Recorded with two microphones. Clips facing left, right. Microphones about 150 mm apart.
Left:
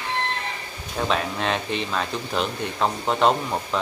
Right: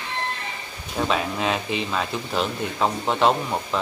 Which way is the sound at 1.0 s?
Centre (ahead or behind).